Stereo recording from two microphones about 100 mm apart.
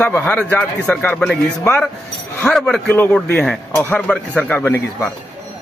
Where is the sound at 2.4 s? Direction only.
5° left (ahead or behind).